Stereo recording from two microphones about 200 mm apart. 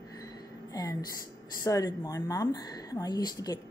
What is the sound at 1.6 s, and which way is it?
A woman's voice, 15° left (ahead or behind).